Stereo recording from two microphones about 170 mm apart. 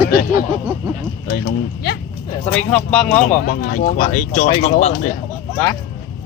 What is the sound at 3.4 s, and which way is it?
Speech, 50° left (ahead or behind).